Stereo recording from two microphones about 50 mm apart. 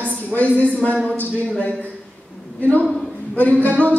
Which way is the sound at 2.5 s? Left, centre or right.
Left.